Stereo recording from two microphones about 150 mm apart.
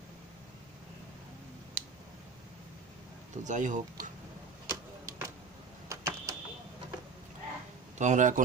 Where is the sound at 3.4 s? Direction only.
55° right (ahead or behind).